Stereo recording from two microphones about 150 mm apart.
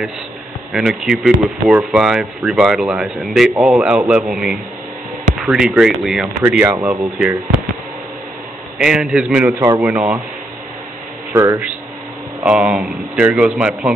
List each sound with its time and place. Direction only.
0.7 s speech: 5° right (ahead or behind)
6.6 s speech: 15° right (ahead or behind)
8.7 s speech: 5° right (ahead or behind)
9.4 s speech: 20° right (ahead or behind)
11.3 s speech: 20° right (ahead or behind)
12.4 s speech: 5° right (ahead or behind)